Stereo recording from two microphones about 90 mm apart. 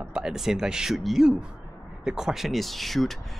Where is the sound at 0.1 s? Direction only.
5° right (ahead or behind).